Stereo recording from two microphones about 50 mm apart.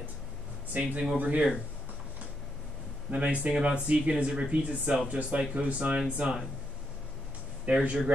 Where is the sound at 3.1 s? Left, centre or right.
Right.